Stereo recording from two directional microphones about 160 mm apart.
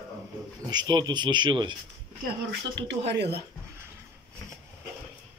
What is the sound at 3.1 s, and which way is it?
Speech, 90° right.